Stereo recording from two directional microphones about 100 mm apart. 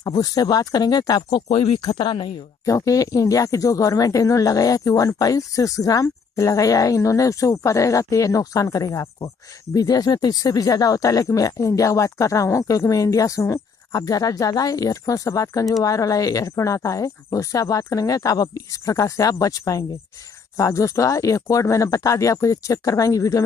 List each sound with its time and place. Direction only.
0.0 s speech: 40° left (ahead or behind)
1.5 s speech: 85° left
1.8 s speech: 45° left (ahead or behind)
2.6 s speech: 35° left (ahead or behind)